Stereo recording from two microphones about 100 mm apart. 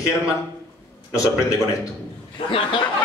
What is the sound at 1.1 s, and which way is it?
Speech, 30° left (ahead or behind).